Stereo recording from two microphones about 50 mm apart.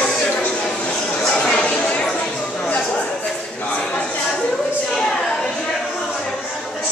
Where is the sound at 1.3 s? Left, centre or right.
Centre.